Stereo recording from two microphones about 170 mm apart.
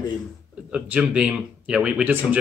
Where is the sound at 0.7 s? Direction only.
5° right (ahead or behind).